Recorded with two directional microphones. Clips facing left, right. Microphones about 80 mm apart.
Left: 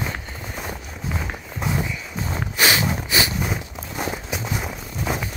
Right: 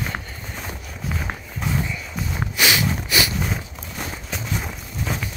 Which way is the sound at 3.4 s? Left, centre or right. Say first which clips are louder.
Left 1 dB; centre.